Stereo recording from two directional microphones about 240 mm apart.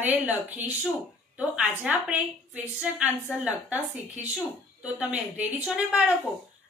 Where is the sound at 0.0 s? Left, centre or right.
Centre.